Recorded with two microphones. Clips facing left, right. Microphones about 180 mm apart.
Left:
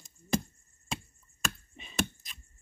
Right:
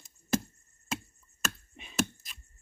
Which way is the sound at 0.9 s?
Centre (ahead or behind).